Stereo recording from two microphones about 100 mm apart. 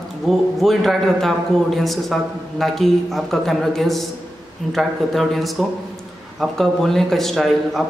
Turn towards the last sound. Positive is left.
turn(degrees=0)  # may be behind; listen again after turning